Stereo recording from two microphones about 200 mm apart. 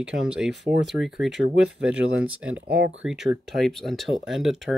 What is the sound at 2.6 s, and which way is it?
Speech, 60° right (ahead or behind).